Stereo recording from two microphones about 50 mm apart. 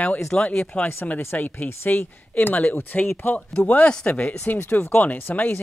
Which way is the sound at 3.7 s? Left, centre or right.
Left.